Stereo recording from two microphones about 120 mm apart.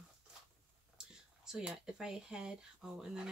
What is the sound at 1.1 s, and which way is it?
Speech, 5° right (ahead or behind).